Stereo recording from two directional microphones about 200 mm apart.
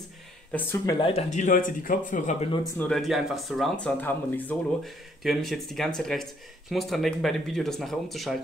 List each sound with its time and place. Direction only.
0.5 s speech: 10° left (ahead or behind)
1.3 s speech: 40° left (ahead or behind)
2.8 s speech: centre (ahead or behind)